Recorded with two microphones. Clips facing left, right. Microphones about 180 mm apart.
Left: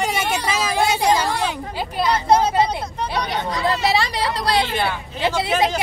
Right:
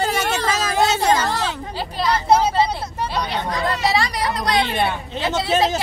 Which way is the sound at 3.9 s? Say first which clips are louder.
Even; 25° left (ahead or behind).